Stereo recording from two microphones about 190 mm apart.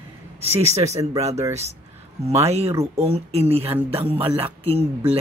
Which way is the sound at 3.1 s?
30° right (ahead or behind).